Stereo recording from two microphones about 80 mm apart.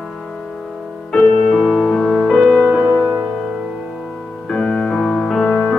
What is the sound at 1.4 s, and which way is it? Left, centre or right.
Music, centre.